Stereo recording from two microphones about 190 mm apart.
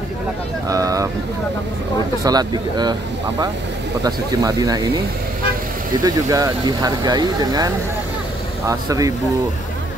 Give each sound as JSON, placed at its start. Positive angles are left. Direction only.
{"t": 0.7, "sound": "speech", "side_deg": -15}
{"t": 2.2, "sound": "speech", "side_deg": -20}
{"t": 6.0, "sound": "speech", "side_deg": -20}